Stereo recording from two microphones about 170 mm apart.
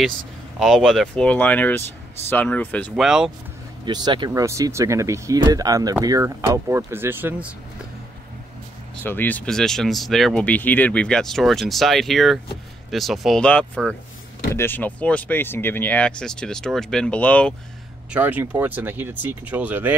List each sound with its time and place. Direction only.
0.6 s speech: centre (ahead or behind)
3.0 s speech: 5° right (ahead or behind)
3.8 s speech: 25° right (ahead or behind); by 7.5 s 10° right (ahead or behind)
9.0 s speech: 10° left (ahead or behind)
18.1 s speech: 10° right (ahead or behind)